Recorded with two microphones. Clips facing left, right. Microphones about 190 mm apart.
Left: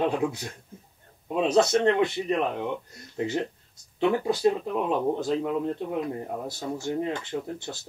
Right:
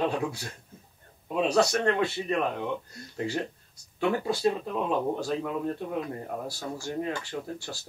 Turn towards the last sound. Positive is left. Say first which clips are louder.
# left 3 dB
turn(degrees=20)  # may be behind; listen again after turning